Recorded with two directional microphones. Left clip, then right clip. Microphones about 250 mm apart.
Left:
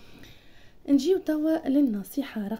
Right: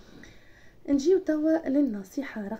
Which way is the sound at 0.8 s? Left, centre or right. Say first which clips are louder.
Even; left.